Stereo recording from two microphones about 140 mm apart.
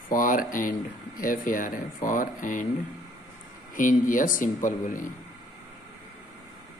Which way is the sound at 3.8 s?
70° left (ahead or behind).